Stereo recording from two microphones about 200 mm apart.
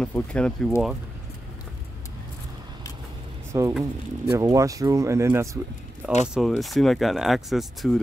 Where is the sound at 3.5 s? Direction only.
15° right (ahead or behind).